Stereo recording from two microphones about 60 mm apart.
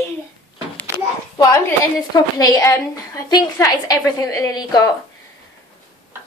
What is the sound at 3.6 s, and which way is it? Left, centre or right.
A woman's voice, left.